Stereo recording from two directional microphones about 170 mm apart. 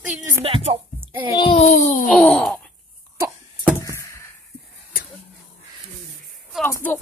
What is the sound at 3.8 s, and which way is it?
Chop, 15° left (ahead or behind).